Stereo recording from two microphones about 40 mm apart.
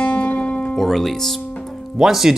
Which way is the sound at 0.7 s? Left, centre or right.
Centre.